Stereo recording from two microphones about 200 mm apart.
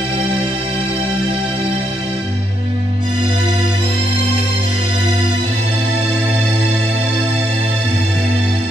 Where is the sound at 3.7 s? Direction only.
30° right (ahead or behind).